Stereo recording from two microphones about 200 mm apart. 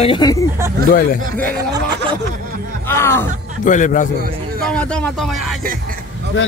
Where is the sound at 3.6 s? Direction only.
40° left (ahead or behind).